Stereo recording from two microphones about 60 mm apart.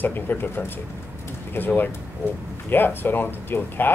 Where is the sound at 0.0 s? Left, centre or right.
Left.